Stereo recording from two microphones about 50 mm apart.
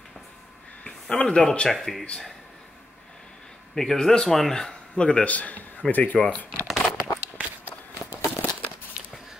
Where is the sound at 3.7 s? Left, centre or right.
Centre; by 6.5 s left.